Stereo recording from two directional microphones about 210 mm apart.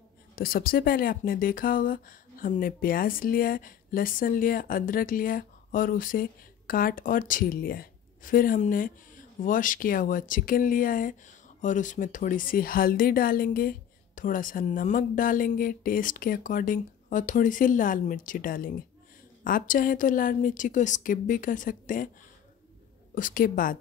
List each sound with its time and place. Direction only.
0.4 s speech: 45° left (ahead or behind)
23.1 s speech: 40° left (ahead or behind)